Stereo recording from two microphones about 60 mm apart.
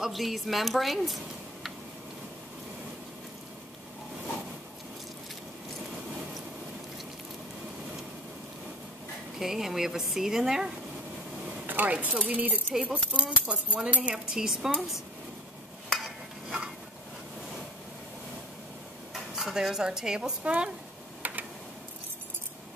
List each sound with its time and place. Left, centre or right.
0.0 s speech: centre
9.4 s speech: centre
11.6 s speech: right
14.3 s speech: centre
16.4 s a sound: centre
19.3 s speech: centre
21.2 s tick: right